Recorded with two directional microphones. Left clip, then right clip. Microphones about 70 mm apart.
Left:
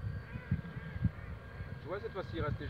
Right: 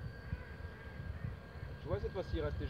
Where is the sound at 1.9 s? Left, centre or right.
Left.